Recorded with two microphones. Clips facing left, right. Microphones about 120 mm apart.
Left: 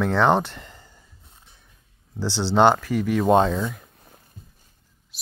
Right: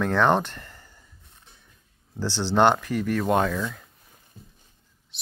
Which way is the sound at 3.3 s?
25° left (ahead or behind).